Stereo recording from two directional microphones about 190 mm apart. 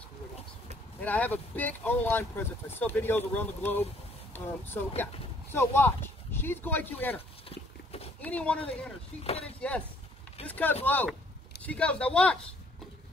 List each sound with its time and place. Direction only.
1.0 s speech: 10° left (ahead or behind)
7.4 s pig: 30° left (ahead or behind)
8.2 s speech: 5° left (ahead or behind)
9.2 s speech: 30° left (ahead or behind)
9.6 s speech: 5° left (ahead or behind)